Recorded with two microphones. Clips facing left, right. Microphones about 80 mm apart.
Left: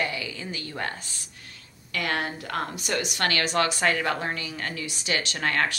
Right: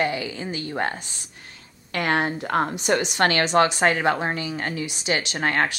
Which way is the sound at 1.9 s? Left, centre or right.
Right.